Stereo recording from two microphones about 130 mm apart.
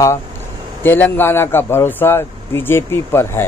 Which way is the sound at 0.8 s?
15° left (ahead or behind).